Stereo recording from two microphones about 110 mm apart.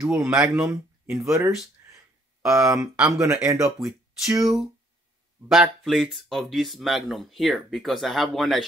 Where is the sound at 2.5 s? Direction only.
30° right (ahead or behind).